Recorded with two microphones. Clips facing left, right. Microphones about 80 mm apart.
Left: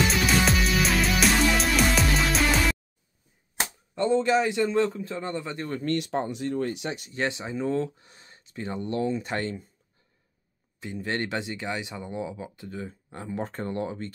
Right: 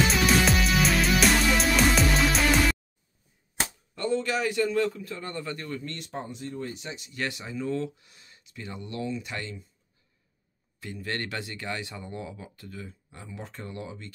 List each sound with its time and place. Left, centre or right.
0.1 s music: centre
3.9 s speech: left
5.7 s speech: left
5.9 s speech: left
7.2 s speech: left
10.8 s speech: left
13.1 s speech: left